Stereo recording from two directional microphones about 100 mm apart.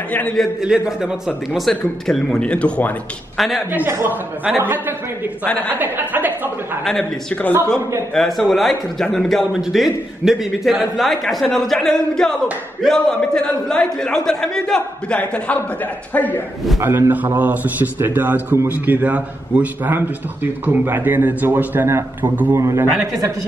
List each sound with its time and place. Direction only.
0.1 s a man's voice: 15° left (ahead or behind)
0.4 s a man's voice: 5° right (ahead or behind); by 2.9 s 10° left (ahead or behind)
3.3 s a man's voice: centre (ahead or behind)
3.7 s a man's voice: 25° right (ahead or behind)
6.8 s a man's voice: 5° left (ahead or behind)
16.8 s a man's voice: 25° right (ahead or behind)